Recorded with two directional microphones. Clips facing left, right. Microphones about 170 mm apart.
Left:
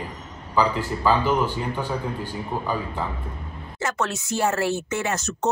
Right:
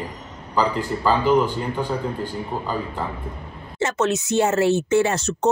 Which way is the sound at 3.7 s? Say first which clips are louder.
Right 6 dB; 25° right (ahead or behind).